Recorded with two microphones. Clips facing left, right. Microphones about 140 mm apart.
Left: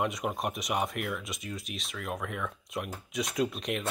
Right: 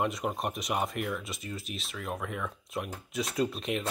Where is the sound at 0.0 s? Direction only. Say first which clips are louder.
Even; centre (ahead or behind).